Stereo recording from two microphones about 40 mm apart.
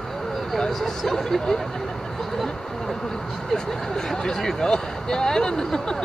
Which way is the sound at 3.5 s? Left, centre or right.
Centre.